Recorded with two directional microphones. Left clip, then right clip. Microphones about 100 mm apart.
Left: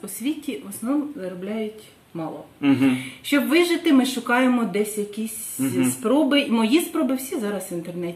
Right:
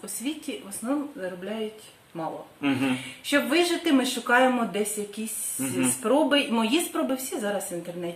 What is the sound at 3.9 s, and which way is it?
Speech, 20° left (ahead or behind).